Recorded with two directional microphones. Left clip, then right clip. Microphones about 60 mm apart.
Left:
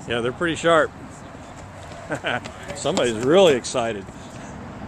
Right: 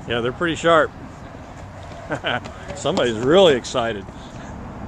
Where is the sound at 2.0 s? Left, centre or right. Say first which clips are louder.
Right 2 dB; centre.